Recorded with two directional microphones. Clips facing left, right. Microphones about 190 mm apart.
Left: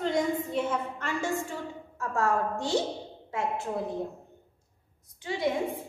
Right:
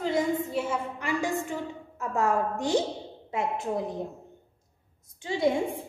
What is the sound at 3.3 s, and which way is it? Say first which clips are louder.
Speech: right 2 dB; 20° right (ahead or behind).